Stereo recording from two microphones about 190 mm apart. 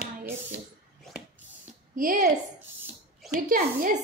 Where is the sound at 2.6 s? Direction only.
10° right (ahead or behind).